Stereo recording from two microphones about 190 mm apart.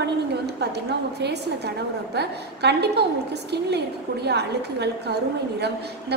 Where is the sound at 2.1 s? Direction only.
60° right (ahead or behind).